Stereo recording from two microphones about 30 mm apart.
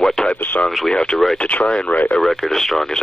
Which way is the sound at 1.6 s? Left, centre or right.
Left.